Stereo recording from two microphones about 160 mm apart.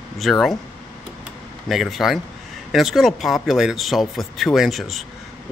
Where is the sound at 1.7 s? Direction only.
Centre (ahead or behind).